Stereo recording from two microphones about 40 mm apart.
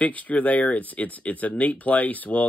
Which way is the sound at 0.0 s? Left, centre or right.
Left.